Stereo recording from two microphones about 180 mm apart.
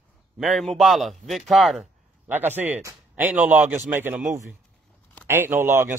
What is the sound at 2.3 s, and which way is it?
A man's voice, 10° right (ahead or behind).